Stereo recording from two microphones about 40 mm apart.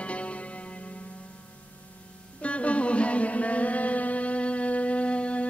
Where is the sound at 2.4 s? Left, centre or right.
Left.